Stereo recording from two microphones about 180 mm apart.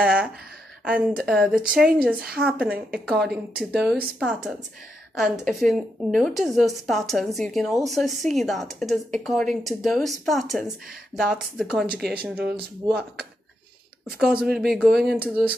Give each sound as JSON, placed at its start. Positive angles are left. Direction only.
{"t": 0.0, "sound": "a woman's voice", "side_deg": -5}
{"t": 14.1, "sound": "a woman's voice", "side_deg": -5}